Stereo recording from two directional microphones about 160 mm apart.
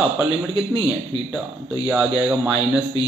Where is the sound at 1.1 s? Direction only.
30° left (ahead or behind).